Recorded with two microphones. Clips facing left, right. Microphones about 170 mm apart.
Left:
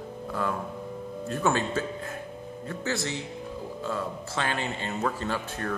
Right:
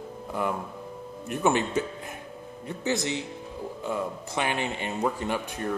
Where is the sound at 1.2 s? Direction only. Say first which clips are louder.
Right 2 dB; 20° right (ahead or behind).